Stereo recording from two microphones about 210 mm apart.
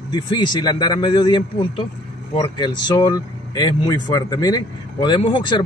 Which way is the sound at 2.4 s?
20° left (ahead or behind).